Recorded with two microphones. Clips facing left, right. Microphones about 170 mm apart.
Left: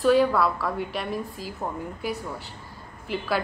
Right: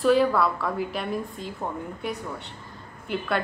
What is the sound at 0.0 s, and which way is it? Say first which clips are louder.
A woman's voice: even; centre (ahead or behind).